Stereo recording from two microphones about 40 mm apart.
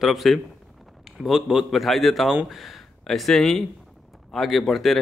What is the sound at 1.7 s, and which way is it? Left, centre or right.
Speech, centre.